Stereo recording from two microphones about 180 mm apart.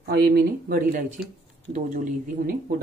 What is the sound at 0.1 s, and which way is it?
Speech, 60° right (ahead or behind).